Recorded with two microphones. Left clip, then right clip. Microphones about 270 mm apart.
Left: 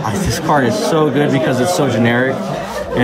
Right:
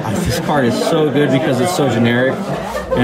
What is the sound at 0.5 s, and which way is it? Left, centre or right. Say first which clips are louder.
Speech: left 2 dB; centre.